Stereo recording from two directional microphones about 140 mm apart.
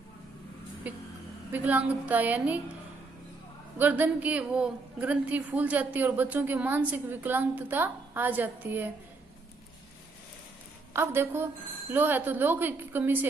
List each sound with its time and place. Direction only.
0.8 s a sound: 10° right (ahead or behind)
1.5 s a woman's voice: 10° right (ahead or behind)
3.7 s a woman's voice: 10° right (ahead or behind)
10.9 s a woman's voice: 15° right (ahead or behind)